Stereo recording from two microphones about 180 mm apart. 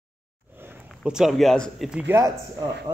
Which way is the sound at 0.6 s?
5° right (ahead or behind).